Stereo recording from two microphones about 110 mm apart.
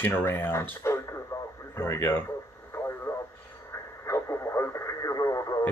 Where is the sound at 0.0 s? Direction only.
20° left (ahead or behind).